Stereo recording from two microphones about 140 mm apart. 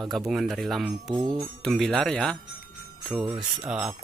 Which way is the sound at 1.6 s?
5° left (ahead or behind).